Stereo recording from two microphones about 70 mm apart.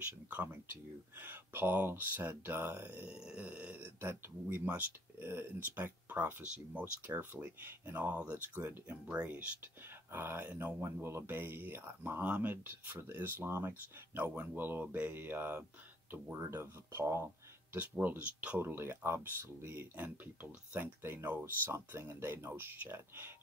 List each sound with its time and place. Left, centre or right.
0.3 s speech: right
10.1 s speech: right
16.1 s speech: right
18.0 s speech: right
18.6 s speech: right